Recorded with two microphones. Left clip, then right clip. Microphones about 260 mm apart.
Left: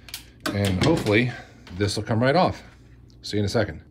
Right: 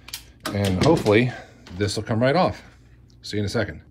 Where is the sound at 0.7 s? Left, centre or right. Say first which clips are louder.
Right 4 dB; centre.